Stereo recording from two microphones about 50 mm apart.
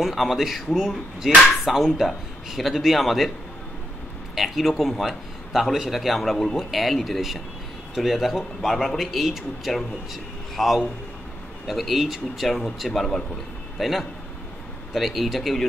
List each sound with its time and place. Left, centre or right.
0.0 s a man's voice: centre
4.4 s a man's voice: centre
10.5 s a sound: centre
11.6 s a man's voice: centre